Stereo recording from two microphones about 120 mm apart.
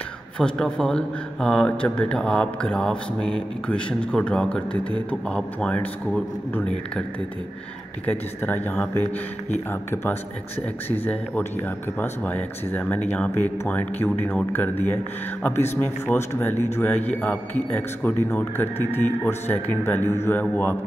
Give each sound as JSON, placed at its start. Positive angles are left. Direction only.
{"t": 0.4, "sound": "speech", "side_deg": 5}
{"t": 8.1, "sound": "speech", "side_deg": 15}